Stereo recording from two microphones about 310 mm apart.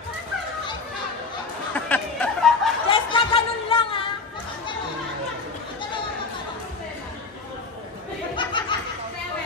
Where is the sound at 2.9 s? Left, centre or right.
Centre.